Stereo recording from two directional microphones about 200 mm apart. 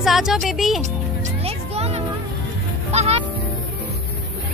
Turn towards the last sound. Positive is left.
turn(degrees=-30)  # may be behind; listen again after turning